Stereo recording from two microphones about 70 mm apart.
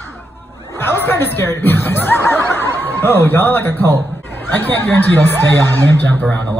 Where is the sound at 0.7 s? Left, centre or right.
Left.